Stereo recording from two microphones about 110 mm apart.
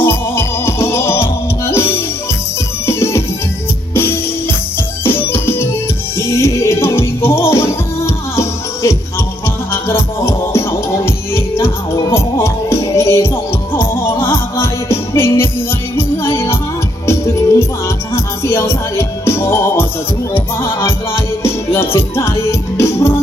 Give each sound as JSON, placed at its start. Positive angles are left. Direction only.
{"t": 0.0, "sound": "music", "side_deg": 20}